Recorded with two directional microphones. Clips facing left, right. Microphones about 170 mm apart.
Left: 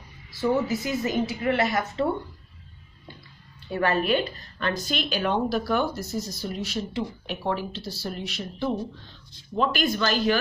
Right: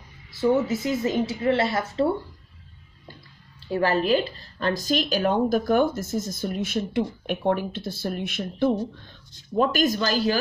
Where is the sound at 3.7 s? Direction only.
30° right (ahead or behind).